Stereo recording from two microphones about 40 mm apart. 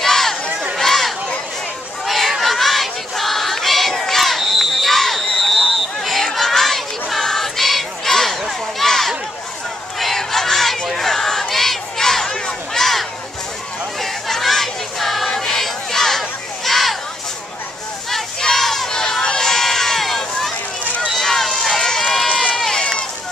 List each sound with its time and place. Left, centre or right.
0.0 s crowd: centre
0.7 s a sound: centre
2.0 s chatter: centre
2.4 s crowd: centre
4.5 s a sound: centre
9.9 s crowd: centre
14.0 s a sound: centre
18.1 s crowd: centre
21.2 s run: centre
22.3 s run: left
22.6 s run: centre